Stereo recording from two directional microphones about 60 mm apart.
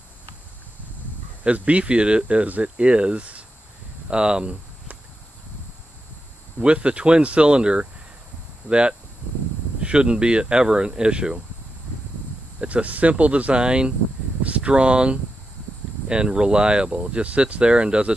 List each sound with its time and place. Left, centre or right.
1.4 s speech: right
6.6 s speech: centre
12.5 s speech: right